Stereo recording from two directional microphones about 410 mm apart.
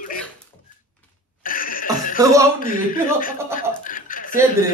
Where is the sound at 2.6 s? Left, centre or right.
Centre.